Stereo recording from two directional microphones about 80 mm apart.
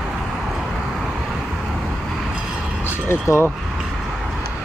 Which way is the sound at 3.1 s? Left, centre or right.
Left.